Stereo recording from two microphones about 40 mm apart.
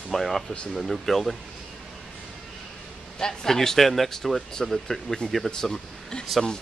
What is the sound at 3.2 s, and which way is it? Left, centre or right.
Speech, centre.